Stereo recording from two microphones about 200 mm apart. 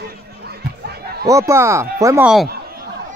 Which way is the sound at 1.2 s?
15° right (ahead or behind).